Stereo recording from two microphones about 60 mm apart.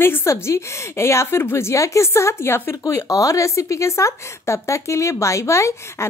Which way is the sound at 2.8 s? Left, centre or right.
Left.